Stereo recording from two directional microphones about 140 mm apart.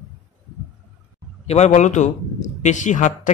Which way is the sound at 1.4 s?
55° left (ahead or behind).